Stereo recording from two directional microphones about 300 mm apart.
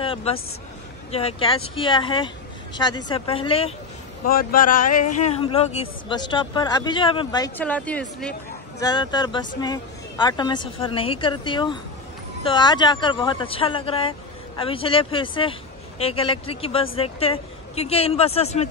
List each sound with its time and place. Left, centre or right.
0.0 s a woman's voice: centre
4.3 s a woman's voice: left